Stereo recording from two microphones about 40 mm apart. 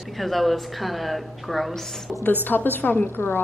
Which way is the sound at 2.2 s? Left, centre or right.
Left.